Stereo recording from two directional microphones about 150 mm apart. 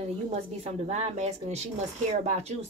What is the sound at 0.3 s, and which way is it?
A woman's voice, 45° right (ahead or behind).